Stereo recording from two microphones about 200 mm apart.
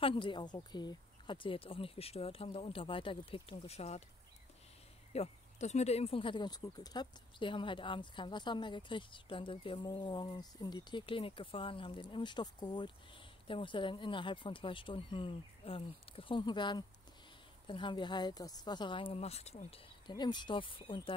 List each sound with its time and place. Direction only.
0.0 s speech: 25° left (ahead or behind)
5.1 s speech: 35° left (ahead or behind)